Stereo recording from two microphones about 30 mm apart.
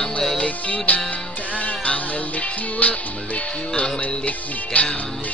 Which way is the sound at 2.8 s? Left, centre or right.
Left.